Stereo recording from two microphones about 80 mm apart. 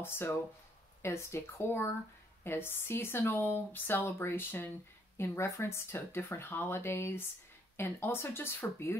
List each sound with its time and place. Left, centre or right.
0.0 s speech: left